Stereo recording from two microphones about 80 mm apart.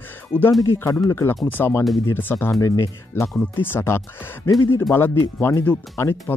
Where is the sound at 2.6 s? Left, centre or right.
Left.